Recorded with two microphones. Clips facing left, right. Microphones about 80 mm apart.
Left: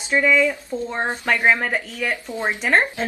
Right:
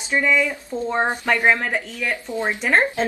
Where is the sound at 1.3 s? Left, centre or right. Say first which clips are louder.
Left 1 dB; centre.